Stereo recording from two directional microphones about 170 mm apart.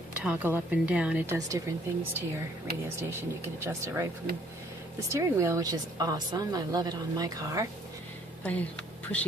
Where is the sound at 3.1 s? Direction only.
15° right (ahead or behind).